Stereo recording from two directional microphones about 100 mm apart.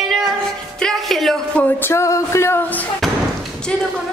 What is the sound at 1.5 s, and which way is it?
Music, 15° left (ahead or behind).